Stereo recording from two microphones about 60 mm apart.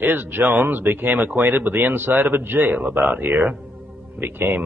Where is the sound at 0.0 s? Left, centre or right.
Right.